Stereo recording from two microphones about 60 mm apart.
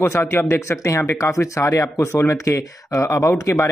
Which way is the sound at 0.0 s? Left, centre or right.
Left.